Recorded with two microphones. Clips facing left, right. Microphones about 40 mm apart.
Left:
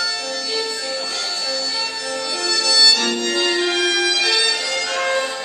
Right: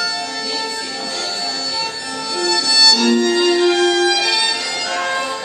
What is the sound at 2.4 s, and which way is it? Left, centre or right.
Music, centre.